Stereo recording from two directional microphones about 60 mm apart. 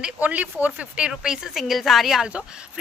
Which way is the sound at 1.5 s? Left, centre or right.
Centre.